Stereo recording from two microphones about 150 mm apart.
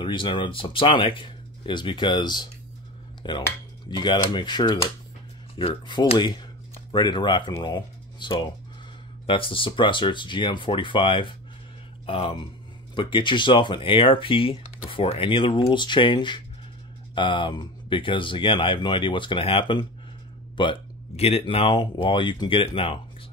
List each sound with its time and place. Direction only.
0.0 s speech: 30° left (ahead or behind)